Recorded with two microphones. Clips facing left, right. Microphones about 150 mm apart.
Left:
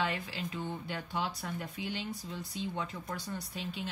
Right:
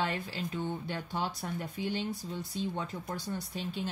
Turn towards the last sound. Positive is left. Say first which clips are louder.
# right 3 dB
turn(degrees=-40)  # may be behind; listen again after turning